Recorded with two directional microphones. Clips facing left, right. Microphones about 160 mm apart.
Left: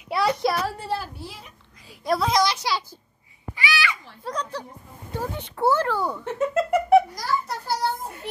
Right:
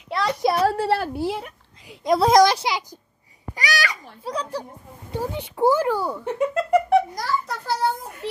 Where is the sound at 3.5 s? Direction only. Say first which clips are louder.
Right 1 dB; 40° right (ahead or behind).